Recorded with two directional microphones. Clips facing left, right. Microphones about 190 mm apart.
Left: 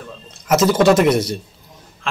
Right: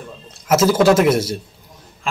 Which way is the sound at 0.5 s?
5° right (ahead or behind).